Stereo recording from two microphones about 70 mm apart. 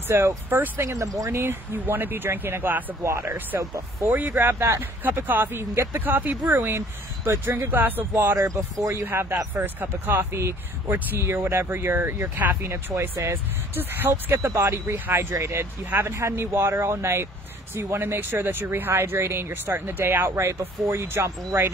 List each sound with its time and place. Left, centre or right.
0.1 s speech: right
0.8 s speech: right
1.3 s speech: right
3.0 s speech: right
4.1 s speech: right
5.2 s speech: right
8.4 s speech: right
9.0 s speech: right
12.6 s speech: right
15.3 s speech: right